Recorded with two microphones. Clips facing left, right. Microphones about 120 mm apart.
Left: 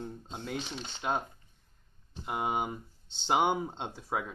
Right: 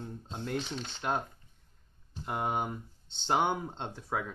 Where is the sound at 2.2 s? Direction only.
5° left (ahead or behind).